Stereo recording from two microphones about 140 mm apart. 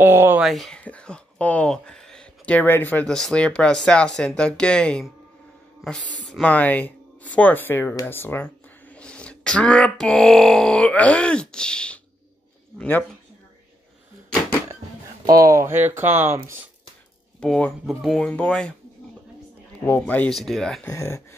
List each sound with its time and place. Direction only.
0.0 s speech: 15° right (ahead or behind)
0.4 s speech: centre (ahead or behind)
15.3 s speech: 20° right (ahead or behind)
17.4 s speech: 5° left (ahead or behind)
19.8 s speech: 15° left (ahead or behind)
20.9 s speech: 20° left (ahead or behind)